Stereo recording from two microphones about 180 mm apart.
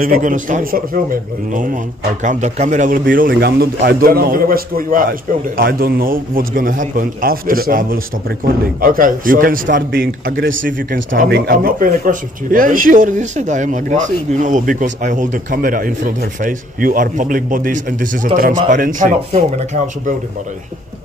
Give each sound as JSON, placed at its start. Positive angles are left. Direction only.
{"t": 0.0, "sound": "speech", "side_deg": -50}
{"t": 3.3, "sound": "a man's voice", "side_deg": -60}